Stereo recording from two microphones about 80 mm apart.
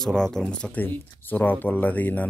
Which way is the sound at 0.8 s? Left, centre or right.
Left.